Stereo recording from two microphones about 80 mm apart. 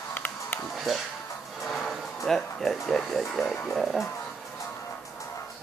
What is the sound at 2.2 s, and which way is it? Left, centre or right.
Speech, centre.